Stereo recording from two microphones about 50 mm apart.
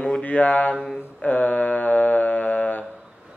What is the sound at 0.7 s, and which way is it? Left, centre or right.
Speech, centre.